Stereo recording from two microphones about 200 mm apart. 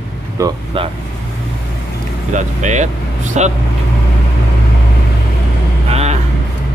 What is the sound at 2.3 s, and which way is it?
Speech, 35° right (ahead or behind).